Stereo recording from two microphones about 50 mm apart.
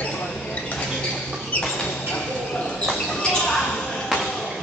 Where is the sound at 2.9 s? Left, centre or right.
Centre.